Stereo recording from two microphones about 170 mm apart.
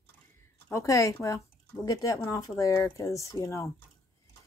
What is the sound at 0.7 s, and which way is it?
Speech, 20° left (ahead or behind).